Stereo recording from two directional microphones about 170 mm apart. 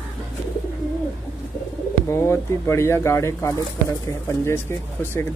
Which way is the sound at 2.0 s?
15° left (ahead or behind).